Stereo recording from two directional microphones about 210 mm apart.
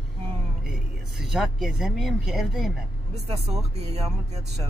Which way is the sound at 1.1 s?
Centre (ahead or behind).